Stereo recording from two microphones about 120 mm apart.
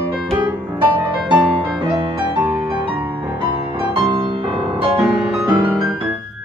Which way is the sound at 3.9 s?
40° right (ahead or behind).